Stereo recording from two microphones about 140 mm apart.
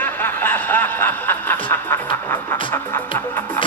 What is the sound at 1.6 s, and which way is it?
Music, 15° left (ahead or behind).